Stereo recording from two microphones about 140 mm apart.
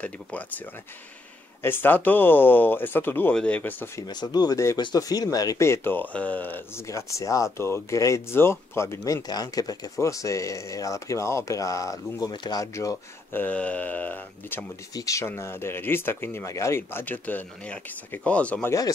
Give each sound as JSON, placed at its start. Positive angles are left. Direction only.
{"t": 0.0, "sound": "speech", "side_deg": 10}
{"t": 1.6, "sound": "speech", "side_deg": 15}
{"t": 4.1, "sound": "speech", "side_deg": 30}
{"t": 15.0, "sound": "speech", "side_deg": 20}